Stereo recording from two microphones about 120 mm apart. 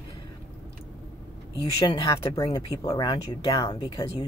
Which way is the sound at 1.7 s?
40° left (ahead or behind).